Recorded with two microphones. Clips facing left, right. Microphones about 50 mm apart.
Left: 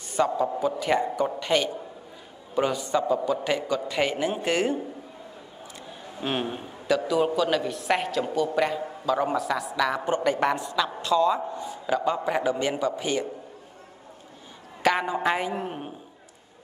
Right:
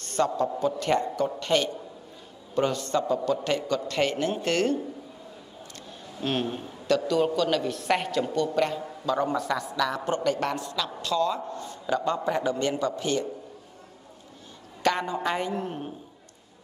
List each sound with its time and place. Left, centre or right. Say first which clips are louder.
0.0 s a man's voice: left 1 dB; centre
6.1 s a man's voice: even; centre
9.8 s a man's voice: left 3 dB; centre
11.6 s a man's voice: even; centre
14.8 s a man's voice: left 2 dB; centre